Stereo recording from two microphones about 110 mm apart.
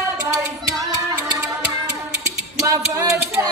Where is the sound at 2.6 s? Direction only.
30° right (ahead or behind).